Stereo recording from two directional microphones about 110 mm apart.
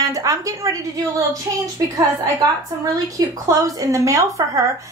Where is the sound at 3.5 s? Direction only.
30° right (ahead or behind).